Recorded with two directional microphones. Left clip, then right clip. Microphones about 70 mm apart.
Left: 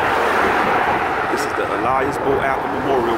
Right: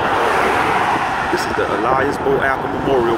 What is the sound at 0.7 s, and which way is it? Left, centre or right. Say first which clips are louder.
Vehicle: right 1 dB; right.